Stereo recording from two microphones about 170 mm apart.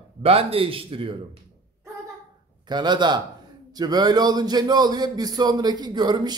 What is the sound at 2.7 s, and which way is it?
Speech, 25° right (ahead or behind).